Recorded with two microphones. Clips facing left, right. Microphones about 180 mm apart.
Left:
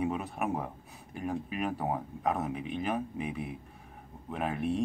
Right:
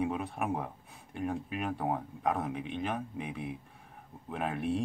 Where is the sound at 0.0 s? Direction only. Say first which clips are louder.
Left 1 dB; centre (ahead or behind).